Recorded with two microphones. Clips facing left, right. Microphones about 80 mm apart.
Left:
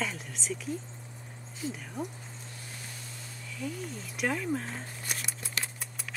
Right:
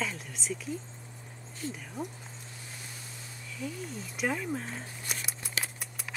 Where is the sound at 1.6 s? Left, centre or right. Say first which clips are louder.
Left 2 dB; centre.